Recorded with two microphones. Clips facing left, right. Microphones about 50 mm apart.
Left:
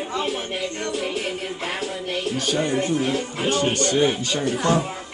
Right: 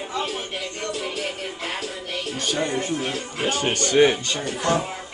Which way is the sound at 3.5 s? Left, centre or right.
Right.